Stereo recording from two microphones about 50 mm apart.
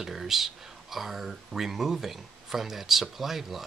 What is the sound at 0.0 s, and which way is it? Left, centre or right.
Speech, centre.